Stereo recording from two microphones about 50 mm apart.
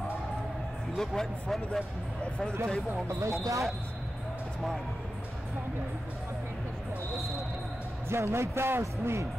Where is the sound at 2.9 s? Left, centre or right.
Right.